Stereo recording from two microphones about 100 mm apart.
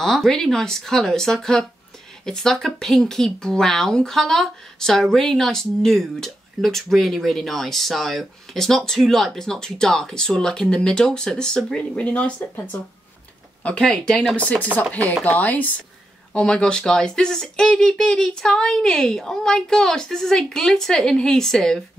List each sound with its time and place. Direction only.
0.0 s speech: 5° left (ahead or behind)